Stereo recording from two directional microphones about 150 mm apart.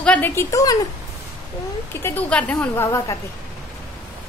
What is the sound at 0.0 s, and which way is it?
Speech, 10° left (ahead or behind).